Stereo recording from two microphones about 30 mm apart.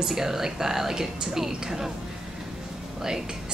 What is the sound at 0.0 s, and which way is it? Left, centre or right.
Speech, centre.